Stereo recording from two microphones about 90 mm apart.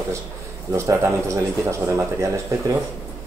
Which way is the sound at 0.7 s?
30° right (ahead or behind).